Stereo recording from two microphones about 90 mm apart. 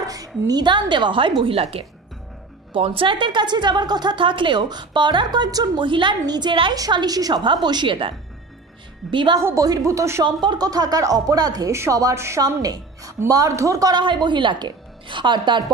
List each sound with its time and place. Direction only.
0.0 s a woman's voice: 40° right (ahead or behind); by 1.3 s 65° right (ahead or behind)
1.4 s a woman's voice: 90° right
3.0 s a woman's voice: 65° right (ahead or behind)
9.1 s a woman's voice: 65° right (ahead or behind)
9.4 s a woman's voice: 35° right (ahead or behind)
10.2 s speech: 60° right (ahead or behind); by 12.4 s 35° right (ahead or behind)
12.4 s a woman's voice: 45° right (ahead or behind)
14.0 s a woman's voice: 60° right (ahead or behind)